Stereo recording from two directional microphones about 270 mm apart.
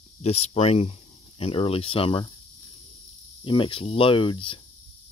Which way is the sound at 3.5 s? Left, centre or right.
Centre.